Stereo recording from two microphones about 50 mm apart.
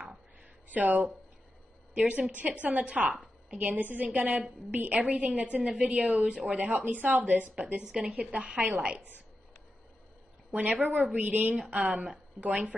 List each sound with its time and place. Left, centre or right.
0.7 s a woman's voice: right
10.5 s a woman's voice: right